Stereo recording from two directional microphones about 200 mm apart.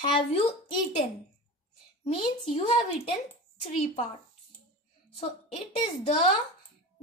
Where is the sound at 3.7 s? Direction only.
35° left (ahead or behind).